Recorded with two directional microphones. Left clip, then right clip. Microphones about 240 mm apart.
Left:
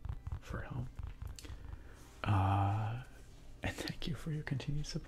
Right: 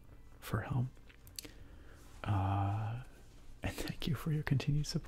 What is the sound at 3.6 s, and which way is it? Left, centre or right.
Speech, centre.